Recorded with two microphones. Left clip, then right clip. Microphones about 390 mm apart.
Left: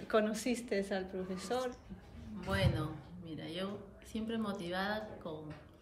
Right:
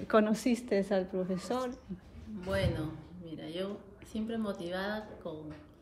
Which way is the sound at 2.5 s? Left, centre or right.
Centre.